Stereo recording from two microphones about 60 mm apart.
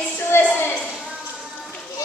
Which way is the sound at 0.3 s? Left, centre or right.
Left.